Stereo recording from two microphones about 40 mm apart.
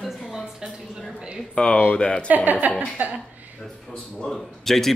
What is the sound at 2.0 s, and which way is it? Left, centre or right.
Speech, left.